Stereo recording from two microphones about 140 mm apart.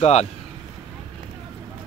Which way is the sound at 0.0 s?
50° left (ahead or behind).